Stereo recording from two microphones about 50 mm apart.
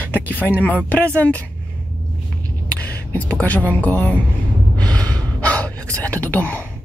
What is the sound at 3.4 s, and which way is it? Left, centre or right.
Speech, left.